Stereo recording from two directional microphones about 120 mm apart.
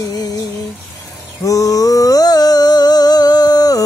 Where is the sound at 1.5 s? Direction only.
30° left (ahead or behind).